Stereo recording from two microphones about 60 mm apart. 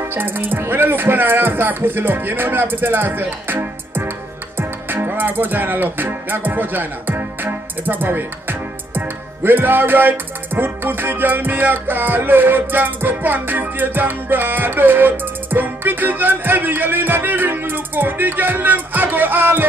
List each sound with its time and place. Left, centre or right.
0.0 s music: right